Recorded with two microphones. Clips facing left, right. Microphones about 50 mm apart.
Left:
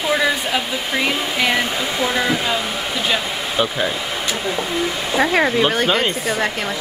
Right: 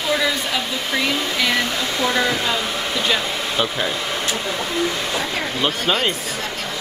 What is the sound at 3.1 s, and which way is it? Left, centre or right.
Hair dryer, centre.